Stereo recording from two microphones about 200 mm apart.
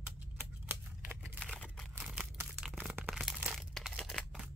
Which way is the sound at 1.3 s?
5° left (ahead or behind).